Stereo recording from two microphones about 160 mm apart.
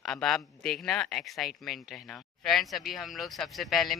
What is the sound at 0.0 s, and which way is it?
Speech, 5° left (ahead or behind).